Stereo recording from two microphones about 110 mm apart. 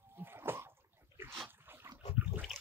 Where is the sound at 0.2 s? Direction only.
20° right (ahead or behind).